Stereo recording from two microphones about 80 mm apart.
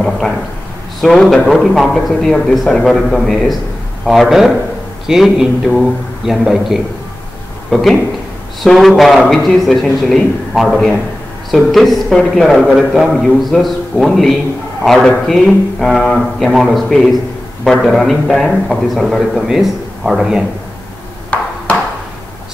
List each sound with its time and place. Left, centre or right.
1.0 s a man's voice: centre
12.5 s a man's voice: centre
21.3 s ping: centre